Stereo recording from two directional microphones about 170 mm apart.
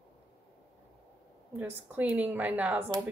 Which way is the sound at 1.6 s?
10° right (ahead or behind).